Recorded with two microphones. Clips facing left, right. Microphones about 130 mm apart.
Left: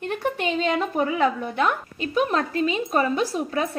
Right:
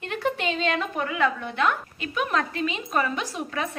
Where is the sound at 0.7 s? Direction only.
30° left (ahead or behind).